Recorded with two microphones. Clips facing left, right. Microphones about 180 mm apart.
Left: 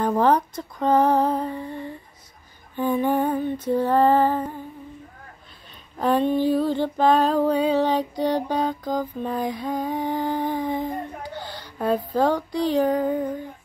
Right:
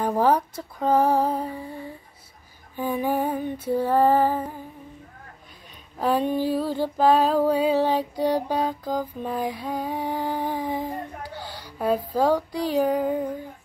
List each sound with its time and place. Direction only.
0.0 s female singing: 10° right (ahead or behind)
5.9 s female singing: 5° right (ahead or behind)